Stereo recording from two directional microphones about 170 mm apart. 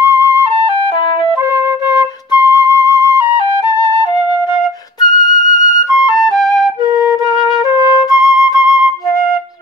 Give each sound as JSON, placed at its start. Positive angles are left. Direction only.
{"t": 0.1, "sound": "flute", "side_deg": -15}
{"t": 1.9, "sound": "flute", "side_deg": -15}
{"t": 5.0, "sound": "music", "side_deg": -45}
{"t": 6.9, "sound": "music", "side_deg": 25}